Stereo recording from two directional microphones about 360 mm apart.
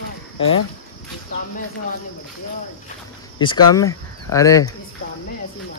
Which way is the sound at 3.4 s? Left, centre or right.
Centre.